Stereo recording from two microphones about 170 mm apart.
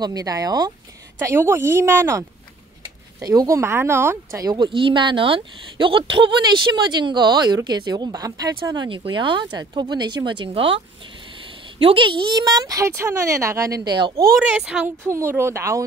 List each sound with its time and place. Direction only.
0.0 s a woman's voice: 20° right (ahead or behind)
11.8 s speech: 30° right (ahead or behind)
14.5 s a woman's voice: 5° right (ahead or behind)
15.0 s a woman's voice: 15° right (ahead or behind)